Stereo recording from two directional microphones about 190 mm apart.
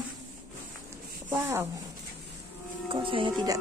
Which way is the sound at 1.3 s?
15° right (ahead or behind).